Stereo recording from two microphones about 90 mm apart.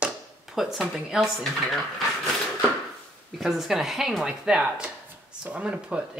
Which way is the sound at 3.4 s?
5° right (ahead or behind).